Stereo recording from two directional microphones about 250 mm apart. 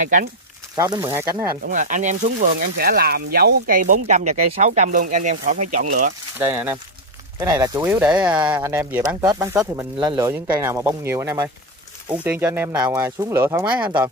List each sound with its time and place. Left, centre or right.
0.7 s speech: centre
1.6 s speech: right
6.3 s speech: centre
8.4 s speech: centre